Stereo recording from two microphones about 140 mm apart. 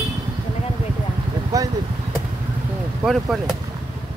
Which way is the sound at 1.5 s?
25° right (ahead or behind).